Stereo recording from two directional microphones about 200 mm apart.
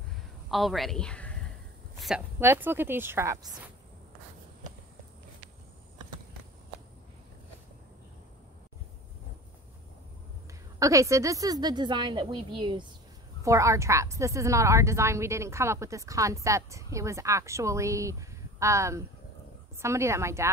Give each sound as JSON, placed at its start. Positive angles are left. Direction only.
{"t": 0.5, "sound": "a woman's voice", "side_deg": 0}
{"t": 10.8, "sound": "a woman's voice", "side_deg": -15}